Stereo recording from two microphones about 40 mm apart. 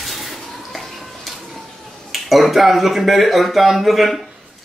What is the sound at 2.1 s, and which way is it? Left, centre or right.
Speech, centre.